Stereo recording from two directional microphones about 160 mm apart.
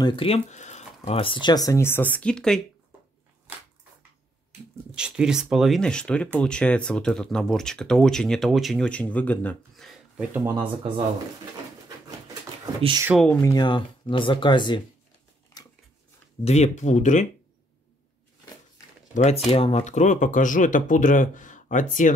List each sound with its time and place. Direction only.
0.0 s speech: 35° left (ahead or behind); by 2.6 s 5° left (ahead or behind)
4.9 s speech: 5° right (ahead or behind)
10.3 s speech: 15° right (ahead or behind)
10.6 s speech: 30° right (ahead or behind)
13.4 s speech: 25° left (ahead or behind)
16.4 s speech: 45° left (ahead or behind)
19.1 s speech: 40° left (ahead or behind)